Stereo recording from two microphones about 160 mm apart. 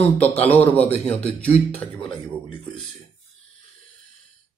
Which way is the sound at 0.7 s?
10° left (ahead or behind).